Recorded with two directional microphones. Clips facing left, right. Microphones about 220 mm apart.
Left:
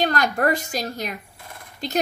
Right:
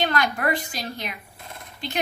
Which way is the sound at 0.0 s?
40° left (ahead or behind).